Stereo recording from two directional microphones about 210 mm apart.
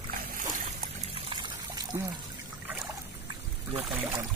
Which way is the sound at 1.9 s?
20° right (ahead or behind).